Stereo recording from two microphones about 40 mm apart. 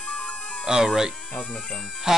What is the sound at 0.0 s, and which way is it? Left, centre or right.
Music, left.